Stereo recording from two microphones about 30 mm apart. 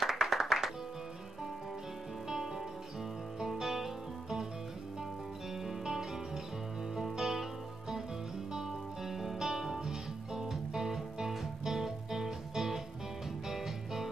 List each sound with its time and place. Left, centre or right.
0.1 s music: centre
2.2 s music: centre
5.5 s music: centre
8.5 s music: centre